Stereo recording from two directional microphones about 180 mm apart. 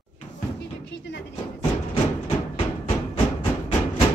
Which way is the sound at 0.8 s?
75° left (ahead or behind).